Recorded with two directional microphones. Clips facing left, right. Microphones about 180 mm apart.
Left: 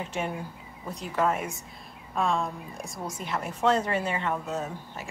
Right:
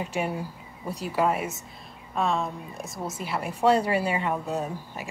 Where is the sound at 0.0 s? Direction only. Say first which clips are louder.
Right 3 dB; 10° right (ahead or behind).